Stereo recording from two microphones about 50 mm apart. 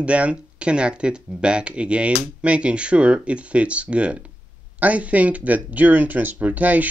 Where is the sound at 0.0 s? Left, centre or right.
Right.